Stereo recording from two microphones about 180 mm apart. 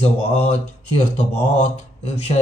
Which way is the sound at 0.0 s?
35° left (ahead or behind).